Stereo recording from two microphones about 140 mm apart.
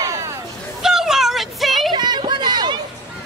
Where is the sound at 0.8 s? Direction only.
5° right (ahead or behind).